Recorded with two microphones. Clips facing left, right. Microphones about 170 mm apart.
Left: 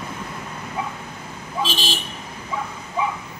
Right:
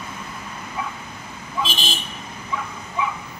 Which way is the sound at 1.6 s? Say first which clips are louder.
Left 2 dB; 35° left (ahead or behind).